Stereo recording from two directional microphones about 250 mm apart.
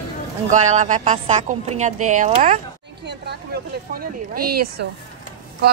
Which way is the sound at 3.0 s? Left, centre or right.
Right.